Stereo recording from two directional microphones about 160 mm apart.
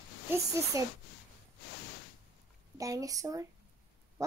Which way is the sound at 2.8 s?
20° right (ahead or behind).